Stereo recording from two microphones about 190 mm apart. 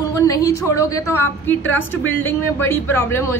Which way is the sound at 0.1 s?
15° left (ahead or behind).